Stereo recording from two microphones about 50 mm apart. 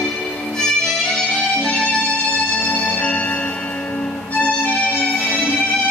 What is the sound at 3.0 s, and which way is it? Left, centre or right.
Music, left.